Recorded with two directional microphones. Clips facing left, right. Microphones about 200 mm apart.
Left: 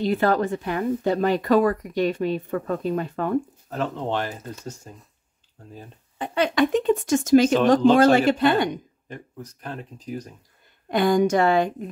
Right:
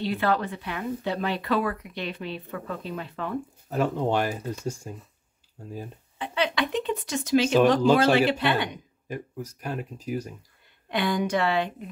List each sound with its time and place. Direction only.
0.0 s speech: 45° left (ahead or behind)
3.7 s speech: 10° right (ahead or behind)
6.1 s speech: 45° left (ahead or behind)
9.1 s speech: 10° right (ahead or behind)
10.9 s speech: 45° left (ahead or behind)